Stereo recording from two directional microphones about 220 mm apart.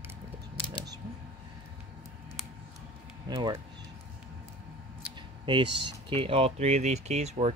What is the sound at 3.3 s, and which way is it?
Speech, 20° right (ahead or behind).